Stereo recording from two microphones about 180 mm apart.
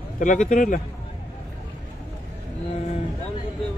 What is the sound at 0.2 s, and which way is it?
Speech, 45° left (ahead or behind).